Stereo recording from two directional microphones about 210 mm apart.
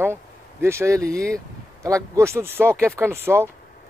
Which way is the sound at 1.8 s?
15° right (ahead or behind).